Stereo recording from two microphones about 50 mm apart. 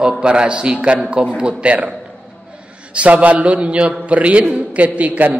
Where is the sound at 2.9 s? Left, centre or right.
Right.